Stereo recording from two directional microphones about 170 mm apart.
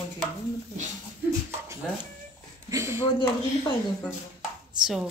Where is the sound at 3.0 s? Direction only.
25° left (ahead or behind).